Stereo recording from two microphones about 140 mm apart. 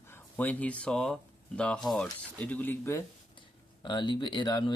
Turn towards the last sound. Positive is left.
turn(degrees=30)  # may be behind; listen again after turning